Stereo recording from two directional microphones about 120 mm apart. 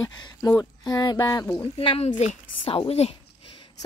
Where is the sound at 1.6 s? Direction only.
50° left (ahead or behind).